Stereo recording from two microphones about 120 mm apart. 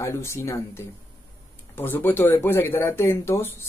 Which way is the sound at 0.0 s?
20° left (ahead or behind).